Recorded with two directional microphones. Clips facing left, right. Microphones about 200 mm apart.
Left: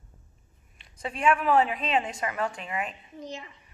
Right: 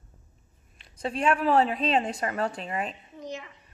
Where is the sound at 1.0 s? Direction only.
35° right (ahead or behind).